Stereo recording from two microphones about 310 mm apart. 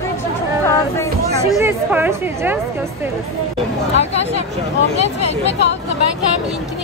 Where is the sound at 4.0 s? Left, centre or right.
Centre.